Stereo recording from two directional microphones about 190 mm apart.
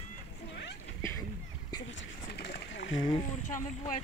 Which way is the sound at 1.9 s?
60° left (ahead or behind).